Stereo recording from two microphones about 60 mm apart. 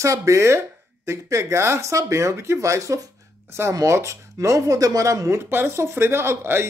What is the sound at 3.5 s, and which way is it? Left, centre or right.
Speech, right.